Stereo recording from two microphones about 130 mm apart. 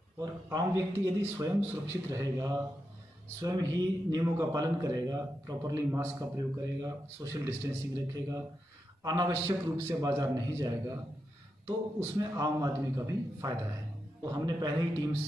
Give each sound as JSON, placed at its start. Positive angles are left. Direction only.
{"t": 0.2, "sound": "a man's voice", "side_deg": -30}